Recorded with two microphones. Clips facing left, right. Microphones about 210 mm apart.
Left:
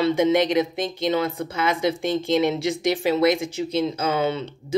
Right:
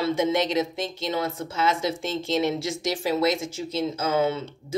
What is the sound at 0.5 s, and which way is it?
Speech, 55° left (ahead or behind).